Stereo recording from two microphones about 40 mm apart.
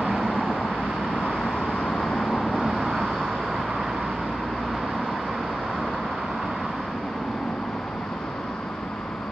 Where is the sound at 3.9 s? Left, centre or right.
Centre.